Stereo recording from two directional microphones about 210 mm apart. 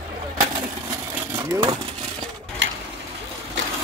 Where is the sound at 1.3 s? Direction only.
20° right (ahead or behind).